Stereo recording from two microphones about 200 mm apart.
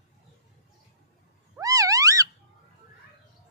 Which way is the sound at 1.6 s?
15° right (ahead or behind).